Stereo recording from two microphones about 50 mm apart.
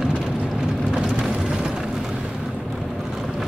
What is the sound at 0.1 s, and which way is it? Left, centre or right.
Vehicle, centre.